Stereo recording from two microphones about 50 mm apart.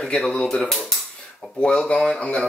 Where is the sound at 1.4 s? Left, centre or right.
Centre.